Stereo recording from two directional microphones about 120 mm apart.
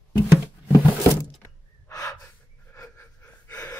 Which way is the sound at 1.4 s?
30° left (ahead or behind).